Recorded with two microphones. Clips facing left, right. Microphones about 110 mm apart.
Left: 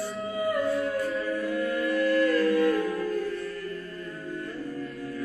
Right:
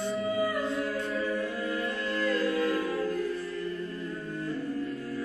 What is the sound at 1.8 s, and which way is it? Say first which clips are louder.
Music: left 10 dB; 25° right (ahead or behind).